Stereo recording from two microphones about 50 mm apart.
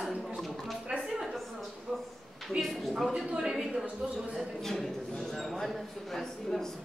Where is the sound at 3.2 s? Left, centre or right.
Centre.